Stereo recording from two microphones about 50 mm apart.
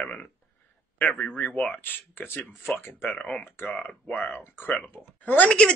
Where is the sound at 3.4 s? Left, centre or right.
Left.